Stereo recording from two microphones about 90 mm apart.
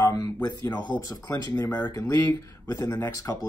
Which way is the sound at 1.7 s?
20° left (ahead or behind).